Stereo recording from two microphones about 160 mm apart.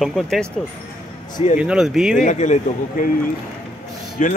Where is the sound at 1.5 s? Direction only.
5° right (ahead or behind).